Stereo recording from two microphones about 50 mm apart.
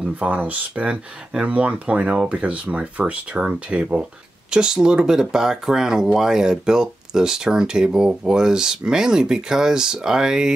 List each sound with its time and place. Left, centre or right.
0.2 s speech: right